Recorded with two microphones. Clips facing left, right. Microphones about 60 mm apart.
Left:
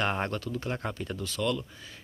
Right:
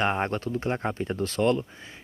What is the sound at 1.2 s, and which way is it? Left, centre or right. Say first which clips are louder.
Speech: right 7 dB; right.